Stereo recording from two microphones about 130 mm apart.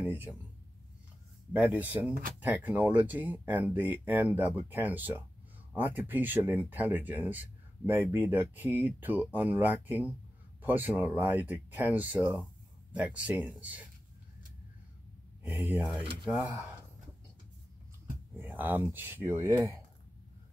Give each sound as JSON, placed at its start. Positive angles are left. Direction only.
{"t": 0.0, "sound": "a sound", "side_deg": -15}
{"t": 1.5, "sound": "speech", "side_deg": -10}
{"t": 15.6, "sound": "speech", "side_deg": -15}
{"t": 16.0, "sound": "speech", "side_deg": -45}
{"t": 18.4, "sound": "speech", "side_deg": -15}